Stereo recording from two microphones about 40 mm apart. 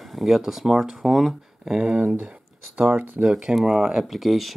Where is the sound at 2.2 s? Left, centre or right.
Right.